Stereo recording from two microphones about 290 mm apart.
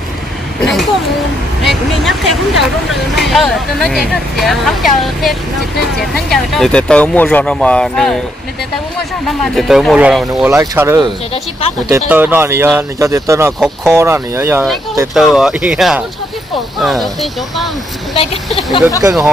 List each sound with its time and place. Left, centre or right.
0.6 s a sound: centre
1.6 s speech: centre
9.2 s speech: centre
18.1 s speech: centre
18.9 s speech: centre